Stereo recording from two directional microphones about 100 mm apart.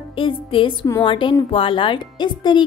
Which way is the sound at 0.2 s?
60° left (ahead or behind).